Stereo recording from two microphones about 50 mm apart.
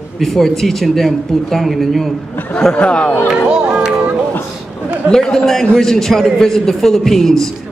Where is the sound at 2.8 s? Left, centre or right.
Left.